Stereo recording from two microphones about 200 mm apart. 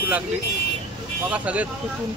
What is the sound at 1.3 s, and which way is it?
Speech, 5° right (ahead or behind).